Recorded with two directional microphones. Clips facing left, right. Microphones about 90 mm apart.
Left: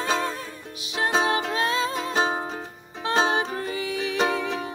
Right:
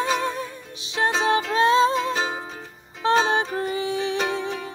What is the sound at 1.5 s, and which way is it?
Music, 25° right (ahead or behind).